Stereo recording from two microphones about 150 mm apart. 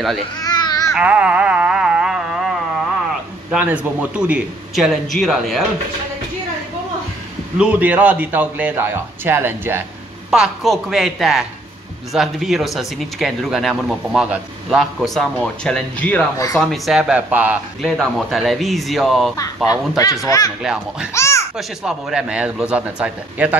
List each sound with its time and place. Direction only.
0.4 s a sound: 30° left (ahead or behind)
0.9 s music: 10° right (ahead or behind)
3.5 s speech: 10° right (ahead or behind)
7.5 s a man's voice: 10° right (ahead or behind)
10.3 s speech: centre (ahead or behind)
17.8 s speech: centre (ahead or behind)
20.2 s speech: 25° left (ahead or behind)
20.6 s a man's voice: 5° right (ahead or behind)
21.1 s a sound: 20° left (ahead or behind)
21.5 s a man's voice: 5° right (ahead or behind)